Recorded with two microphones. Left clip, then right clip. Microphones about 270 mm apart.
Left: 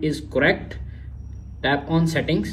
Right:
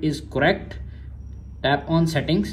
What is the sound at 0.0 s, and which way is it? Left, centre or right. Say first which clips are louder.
A woman's voice: left 1 dB; centre.